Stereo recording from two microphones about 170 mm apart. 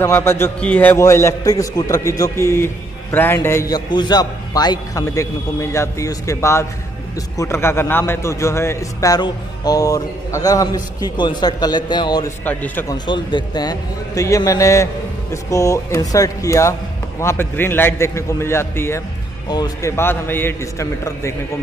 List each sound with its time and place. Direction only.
0.0 s a man's voice: 15° left (ahead or behind)
12.4 s a man's voice: 10° left (ahead or behind)
12.9 s a man's voice: 25° left (ahead or behind)
19.5 s a man's voice: 25° left (ahead or behind)
20.0 s a man's voice: 10° left (ahead or behind)